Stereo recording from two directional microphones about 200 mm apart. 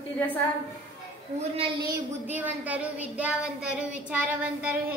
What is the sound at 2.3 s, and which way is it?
Speech, 10° right (ahead or behind).